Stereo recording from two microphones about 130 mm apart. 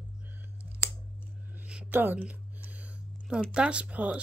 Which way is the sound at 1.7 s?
10° right (ahead or behind).